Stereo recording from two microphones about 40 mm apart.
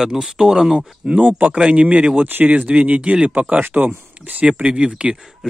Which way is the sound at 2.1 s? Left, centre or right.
Right.